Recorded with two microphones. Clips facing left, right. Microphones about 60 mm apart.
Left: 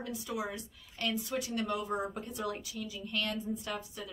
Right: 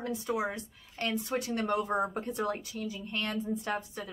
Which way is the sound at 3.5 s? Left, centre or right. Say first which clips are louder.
Right 5 dB; right.